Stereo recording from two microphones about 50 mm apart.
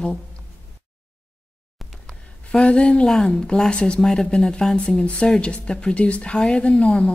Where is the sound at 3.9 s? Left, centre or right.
Centre.